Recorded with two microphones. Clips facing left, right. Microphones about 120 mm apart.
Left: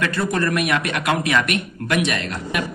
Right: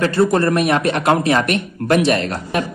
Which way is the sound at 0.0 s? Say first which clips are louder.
Right 7 dB; 30° right (ahead or behind).